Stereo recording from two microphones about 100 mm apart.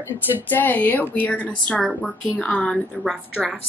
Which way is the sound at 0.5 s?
20° left (ahead or behind).